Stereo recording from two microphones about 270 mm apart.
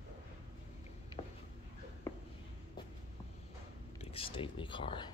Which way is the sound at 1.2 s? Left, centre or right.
Left.